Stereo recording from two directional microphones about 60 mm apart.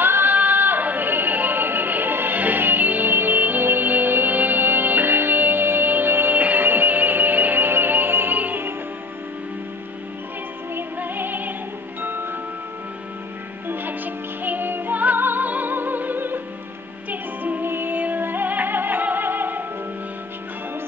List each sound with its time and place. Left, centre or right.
0.0 s music: right
10.7 s music: right
13.7 s music: right